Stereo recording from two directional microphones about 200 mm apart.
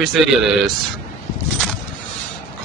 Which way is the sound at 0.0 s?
Centre (ahead or behind).